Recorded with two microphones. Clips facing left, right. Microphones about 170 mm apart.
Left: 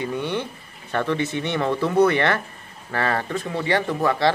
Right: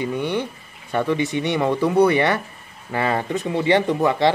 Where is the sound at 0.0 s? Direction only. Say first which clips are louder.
Right 3 dB; 15° right (ahead or behind).